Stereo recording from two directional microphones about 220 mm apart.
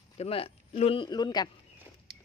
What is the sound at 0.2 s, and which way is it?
A man's voice, 25° left (ahead or behind).